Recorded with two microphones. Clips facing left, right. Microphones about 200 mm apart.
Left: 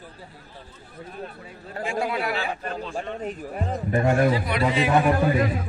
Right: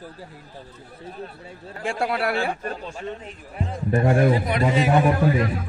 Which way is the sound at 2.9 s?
45° left (ahead or behind).